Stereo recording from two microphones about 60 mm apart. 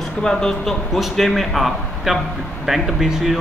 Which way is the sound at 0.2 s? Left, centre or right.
Centre.